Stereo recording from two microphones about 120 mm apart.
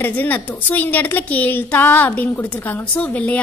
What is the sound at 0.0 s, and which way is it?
A woman's voice, 15° left (ahead or behind).